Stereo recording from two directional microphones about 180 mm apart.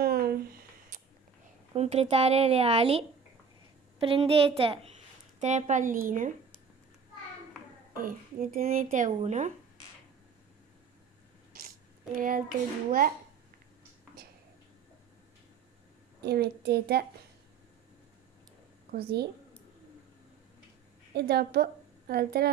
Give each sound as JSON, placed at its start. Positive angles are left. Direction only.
{"t": 0.0, "sound": "a sound", "side_deg": -55}
{"t": 1.7, "sound": "speech", "side_deg": -35}
{"t": 5.4, "sound": "speech", "side_deg": -40}
{"t": 7.9, "sound": "speech", "side_deg": -50}
{"t": 12.2, "sound": "speech", "side_deg": -50}
{"t": 16.2, "sound": "a woman's voice", "side_deg": -65}
{"t": 18.9, "sound": "a woman's voice", "side_deg": -60}
{"t": 21.1, "sound": "a woman's voice", "side_deg": -65}